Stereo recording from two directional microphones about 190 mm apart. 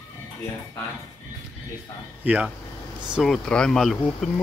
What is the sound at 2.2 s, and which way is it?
Speech, 10° right (ahead or behind).